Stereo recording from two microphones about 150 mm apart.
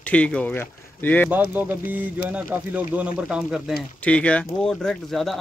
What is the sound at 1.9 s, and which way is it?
Speech, 10° right (ahead or behind).